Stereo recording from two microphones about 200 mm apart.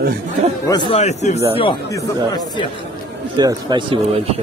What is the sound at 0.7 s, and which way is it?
Speech, 30° left (ahead or behind).